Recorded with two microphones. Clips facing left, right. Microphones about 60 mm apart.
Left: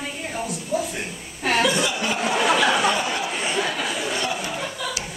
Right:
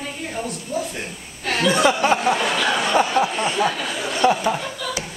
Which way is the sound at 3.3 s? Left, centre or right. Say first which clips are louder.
Right 2 dB; centre.